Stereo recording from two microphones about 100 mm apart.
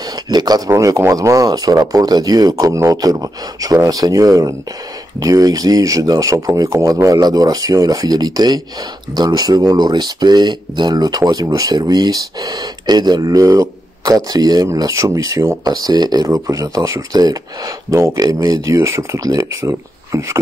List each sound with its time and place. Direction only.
0.1 s a sound: 40° right (ahead or behind)
0.7 s speech: 30° right (ahead or behind)
16.3 s speech: 30° right (ahead or behind)